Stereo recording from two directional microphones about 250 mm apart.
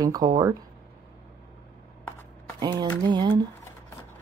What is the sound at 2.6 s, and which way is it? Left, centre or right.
Speech, centre.